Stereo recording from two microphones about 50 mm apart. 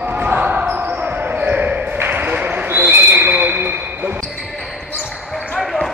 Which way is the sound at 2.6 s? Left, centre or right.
Right.